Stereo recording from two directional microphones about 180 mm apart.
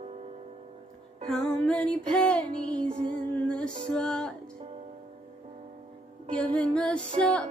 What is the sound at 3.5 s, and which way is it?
Music, 5° left (ahead or behind).